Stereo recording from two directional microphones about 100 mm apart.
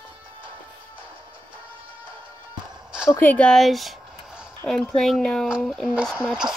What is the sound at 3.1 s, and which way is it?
Speech, 20° left (ahead or behind).